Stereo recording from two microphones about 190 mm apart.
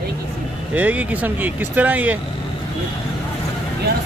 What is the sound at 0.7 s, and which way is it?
Speech, 10° right (ahead or behind).